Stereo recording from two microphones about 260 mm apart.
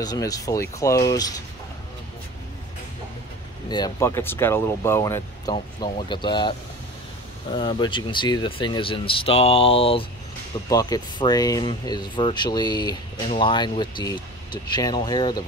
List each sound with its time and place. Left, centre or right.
0.0 s speech: centre
3.6 s speech: centre
7.5 s speech: centre